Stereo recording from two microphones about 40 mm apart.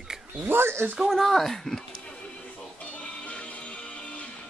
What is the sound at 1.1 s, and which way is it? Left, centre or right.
Speech, centre.